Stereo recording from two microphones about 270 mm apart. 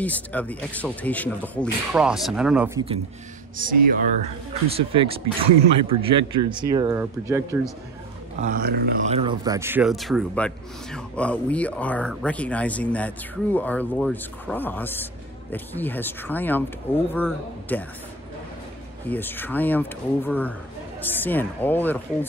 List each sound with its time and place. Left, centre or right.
0.0 s a man's voice: centre
3.5 s speech: right
4.6 s speech: right
8.4 s speech: right
9.1 s a man's voice: centre
19.0 s speech: centre